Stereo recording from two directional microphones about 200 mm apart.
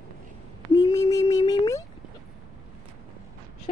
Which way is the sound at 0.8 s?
20° left (ahead or behind).